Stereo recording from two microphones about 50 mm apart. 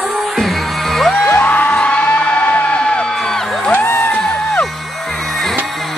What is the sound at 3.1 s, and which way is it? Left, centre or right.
Music, centre.